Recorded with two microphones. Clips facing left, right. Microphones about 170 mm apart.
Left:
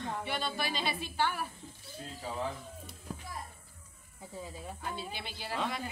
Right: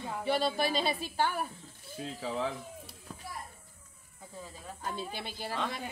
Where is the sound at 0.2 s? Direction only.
40° right (ahead or behind).